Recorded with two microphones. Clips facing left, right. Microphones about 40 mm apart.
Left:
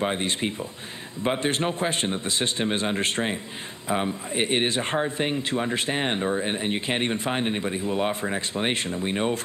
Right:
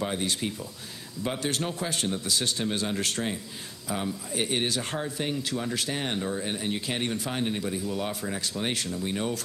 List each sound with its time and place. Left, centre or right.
0.0 s speech: left